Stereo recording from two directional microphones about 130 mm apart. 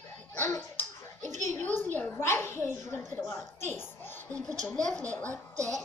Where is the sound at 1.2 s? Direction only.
70° right (ahead or behind).